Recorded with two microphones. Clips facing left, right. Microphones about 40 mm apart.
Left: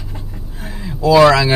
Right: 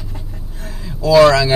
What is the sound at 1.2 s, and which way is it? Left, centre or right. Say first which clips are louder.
Speech: right 1 dB; centre.